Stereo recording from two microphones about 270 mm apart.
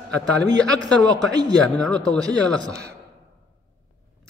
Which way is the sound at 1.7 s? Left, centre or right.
Centre.